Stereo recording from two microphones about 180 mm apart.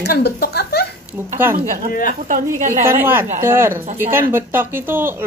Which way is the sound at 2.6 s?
45° right (ahead or behind).